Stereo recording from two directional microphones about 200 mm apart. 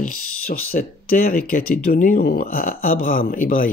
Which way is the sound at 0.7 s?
45° left (ahead or behind).